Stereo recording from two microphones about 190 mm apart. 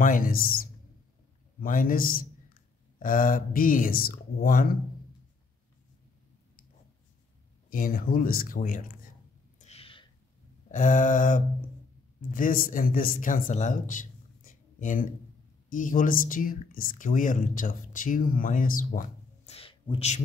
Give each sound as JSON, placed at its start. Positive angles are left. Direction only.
{"t": 0.0, "sound": "speech", "side_deg": 45}
{"t": 7.7, "sound": "speech", "side_deg": 45}
{"t": 9.6, "sound": "a sound", "side_deg": 35}
{"t": 10.7, "sound": "a man's voice", "side_deg": 40}